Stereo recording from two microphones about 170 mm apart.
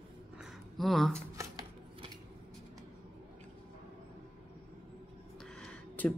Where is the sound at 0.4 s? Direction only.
Centre (ahead or behind).